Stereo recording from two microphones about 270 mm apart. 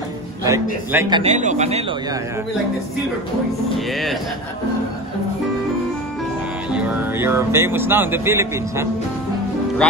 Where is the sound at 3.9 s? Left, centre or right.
Centre.